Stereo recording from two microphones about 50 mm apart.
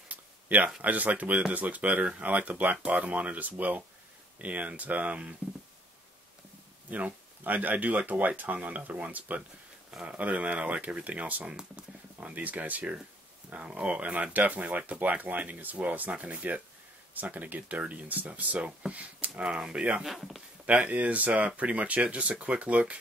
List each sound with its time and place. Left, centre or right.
0.1 s a sound: right
0.8 s speech: right
6.9 s speech: right
20.0 s speech: centre
20.6 s speech: right